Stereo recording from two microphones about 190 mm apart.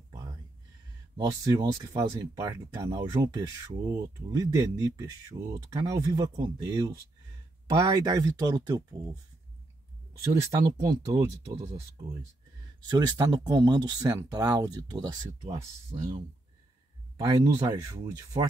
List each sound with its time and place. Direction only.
1.1 s speech: 20° right (ahead or behind)
10.8 s speech: 20° right (ahead or behind)
11.6 s speech: 30° right (ahead or behind)
12.8 s speech: 20° right (ahead or behind)
17.2 s speech: 20° right (ahead or behind)